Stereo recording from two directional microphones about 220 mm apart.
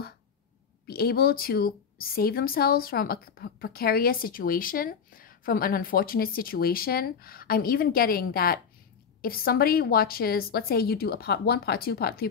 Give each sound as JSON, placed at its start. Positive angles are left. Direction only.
{"t": 0.8, "sound": "a woman's voice", "side_deg": 45}